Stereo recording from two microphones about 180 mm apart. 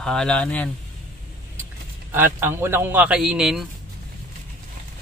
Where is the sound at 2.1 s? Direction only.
10° right (ahead or behind).